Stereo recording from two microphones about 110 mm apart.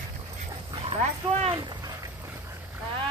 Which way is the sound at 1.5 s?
40° right (ahead or behind).